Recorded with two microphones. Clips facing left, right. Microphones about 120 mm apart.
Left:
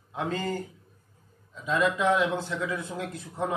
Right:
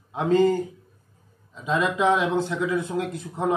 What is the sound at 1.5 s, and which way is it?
Speech, 20° right (ahead or behind).